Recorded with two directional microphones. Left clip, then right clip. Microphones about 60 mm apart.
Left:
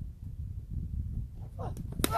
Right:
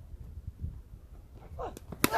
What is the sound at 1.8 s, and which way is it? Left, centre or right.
Chop, left.